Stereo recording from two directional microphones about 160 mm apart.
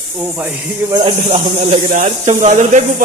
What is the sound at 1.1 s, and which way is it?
Speech, 40° right (ahead or behind).